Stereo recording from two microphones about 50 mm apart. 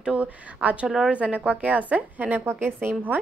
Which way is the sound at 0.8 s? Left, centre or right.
Centre.